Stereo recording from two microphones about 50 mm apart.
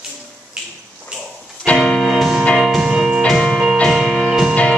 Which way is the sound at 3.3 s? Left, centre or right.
Centre.